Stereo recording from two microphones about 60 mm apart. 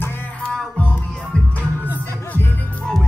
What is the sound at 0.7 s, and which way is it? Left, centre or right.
Music, left.